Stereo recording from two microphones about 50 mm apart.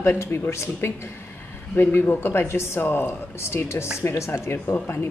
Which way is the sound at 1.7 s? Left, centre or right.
Left.